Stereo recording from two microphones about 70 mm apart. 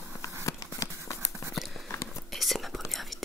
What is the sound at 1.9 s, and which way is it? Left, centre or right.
Whispering, left.